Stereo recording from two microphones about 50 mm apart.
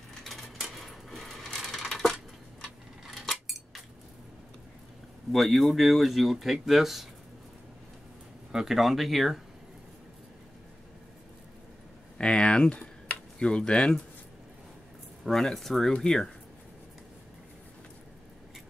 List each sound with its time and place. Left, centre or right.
0.2 s coin: centre
3.1 s a sound: centre
5.3 s speech: centre
8.5 s speech: centre
12.2 s speech: left
15.2 s speech: centre